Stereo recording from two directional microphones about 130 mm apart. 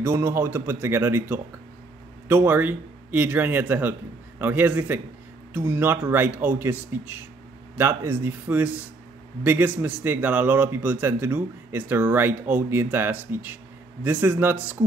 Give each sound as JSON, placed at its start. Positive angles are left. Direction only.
{"t": 0.0, "sound": "a man's voice", "side_deg": -20}